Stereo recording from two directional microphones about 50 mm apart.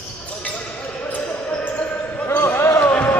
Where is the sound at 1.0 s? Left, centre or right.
Left.